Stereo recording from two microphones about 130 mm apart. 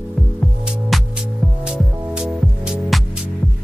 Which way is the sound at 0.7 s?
Centre (ahead or behind).